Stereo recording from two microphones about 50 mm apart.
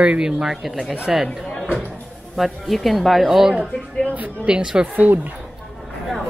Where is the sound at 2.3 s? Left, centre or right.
Centre.